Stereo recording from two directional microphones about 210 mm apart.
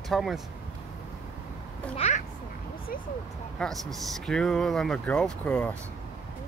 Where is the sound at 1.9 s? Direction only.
30° left (ahead or behind).